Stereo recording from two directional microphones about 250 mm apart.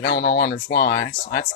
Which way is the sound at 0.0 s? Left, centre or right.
Left.